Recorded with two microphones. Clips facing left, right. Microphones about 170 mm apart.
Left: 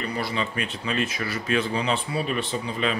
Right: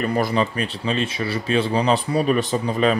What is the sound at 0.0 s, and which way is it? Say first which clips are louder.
Speech: right 8 dB; 45° right (ahead or behind).